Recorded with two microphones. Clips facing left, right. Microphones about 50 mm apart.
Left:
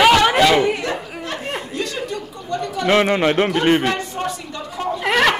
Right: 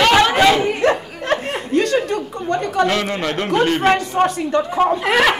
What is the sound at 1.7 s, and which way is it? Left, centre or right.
Chuckle, right.